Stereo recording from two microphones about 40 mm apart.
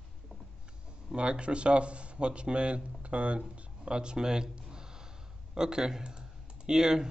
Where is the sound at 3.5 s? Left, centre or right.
Right.